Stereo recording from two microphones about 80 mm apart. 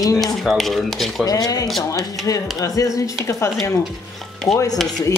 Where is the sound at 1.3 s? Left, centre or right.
Left.